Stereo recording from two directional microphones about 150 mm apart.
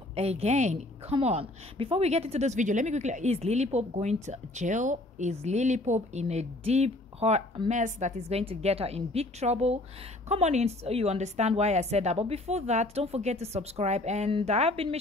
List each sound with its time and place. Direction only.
0.1 s a woman's voice: 45° right (ahead or behind)